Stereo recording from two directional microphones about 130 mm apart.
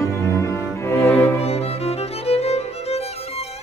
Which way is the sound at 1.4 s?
50° left (ahead or behind).